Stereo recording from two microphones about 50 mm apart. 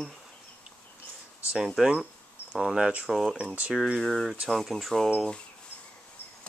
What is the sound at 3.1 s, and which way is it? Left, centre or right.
Speech, centre.